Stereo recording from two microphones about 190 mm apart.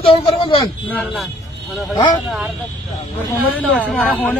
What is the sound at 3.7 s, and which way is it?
Speech, 10° left (ahead or behind).